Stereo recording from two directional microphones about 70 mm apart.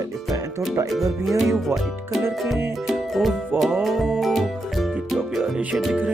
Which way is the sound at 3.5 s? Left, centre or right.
Right.